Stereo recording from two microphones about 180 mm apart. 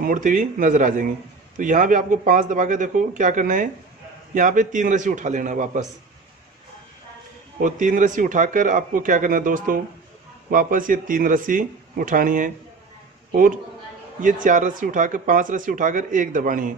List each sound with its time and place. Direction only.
0.0 s speech: 50° right (ahead or behind)
7.6 s a man's voice: 45° right (ahead or behind)